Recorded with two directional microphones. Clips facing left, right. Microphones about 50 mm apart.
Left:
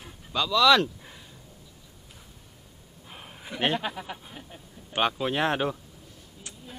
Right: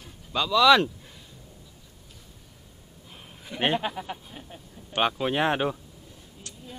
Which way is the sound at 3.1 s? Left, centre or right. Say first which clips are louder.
Left 2 dB; left.